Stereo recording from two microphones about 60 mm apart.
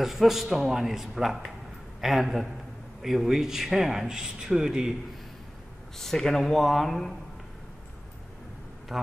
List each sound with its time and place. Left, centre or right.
0.0 s a man's voice: centre
5.9 s a man's voice: centre
8.9 s a man's voice: centre